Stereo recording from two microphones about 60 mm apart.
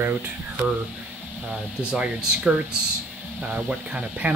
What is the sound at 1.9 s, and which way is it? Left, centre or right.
Speech, centre.